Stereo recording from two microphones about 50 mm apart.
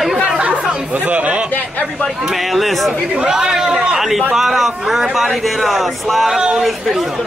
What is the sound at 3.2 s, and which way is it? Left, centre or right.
A man's voice, centre.